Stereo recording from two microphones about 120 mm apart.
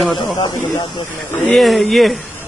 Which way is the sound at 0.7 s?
35° left (ahead or behind).